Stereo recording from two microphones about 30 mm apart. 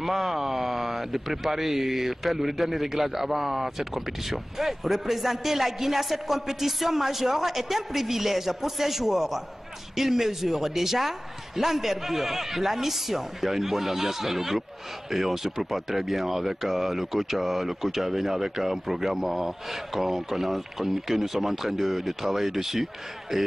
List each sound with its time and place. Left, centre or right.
0.0 s a man's voice: centre